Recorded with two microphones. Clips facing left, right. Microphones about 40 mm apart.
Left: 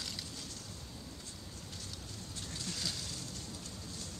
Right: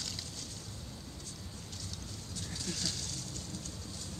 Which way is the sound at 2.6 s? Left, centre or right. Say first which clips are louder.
Right 1 dB; centre.